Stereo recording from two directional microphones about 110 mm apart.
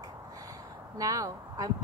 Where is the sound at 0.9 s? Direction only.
30° right (ahead or behind).